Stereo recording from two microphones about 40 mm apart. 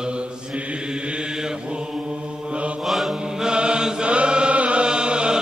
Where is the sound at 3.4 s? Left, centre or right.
Right.